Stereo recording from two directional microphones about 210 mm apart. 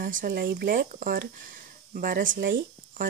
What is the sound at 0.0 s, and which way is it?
Speech, 40° right (ahead or behind).